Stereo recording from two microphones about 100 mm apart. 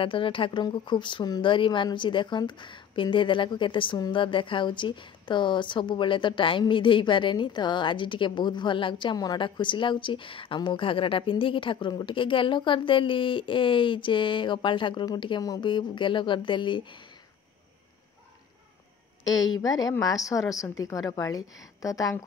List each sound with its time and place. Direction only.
0.0 s speech: 60° left (ahead or behind); by 9.4 s 40° left (ahead or behind)
9.4 s a woman's voice: 55° left (ahead or behind)
19.2 s a woman's voice: 40° left (ahead or behind)